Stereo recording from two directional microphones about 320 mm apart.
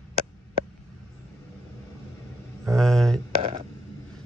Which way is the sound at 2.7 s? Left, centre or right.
Centre.